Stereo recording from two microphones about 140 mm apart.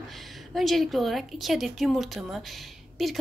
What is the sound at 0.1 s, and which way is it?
A woman's voice, centre (ahead or behind).